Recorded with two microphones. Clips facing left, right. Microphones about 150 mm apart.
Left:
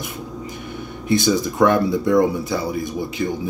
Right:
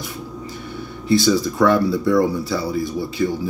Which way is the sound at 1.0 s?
20° left (ahead or behind).